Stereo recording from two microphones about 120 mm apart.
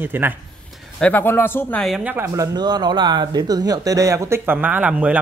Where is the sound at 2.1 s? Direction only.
20° right (ahead or behind).